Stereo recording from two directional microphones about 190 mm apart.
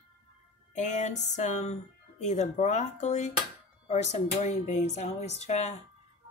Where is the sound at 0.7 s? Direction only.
40° left (ahead or behind).